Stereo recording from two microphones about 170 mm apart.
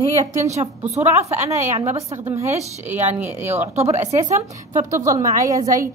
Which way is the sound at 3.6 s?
40° right (ahead or behind).